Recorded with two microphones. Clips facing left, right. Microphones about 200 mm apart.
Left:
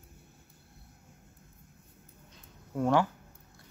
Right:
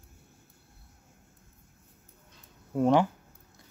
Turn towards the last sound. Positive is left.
turn(degrees=-20)  # may be behind; listen again after turning